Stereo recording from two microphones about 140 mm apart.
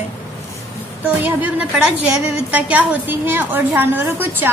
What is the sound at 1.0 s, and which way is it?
A woman's voice, 10° right (ahead or behind).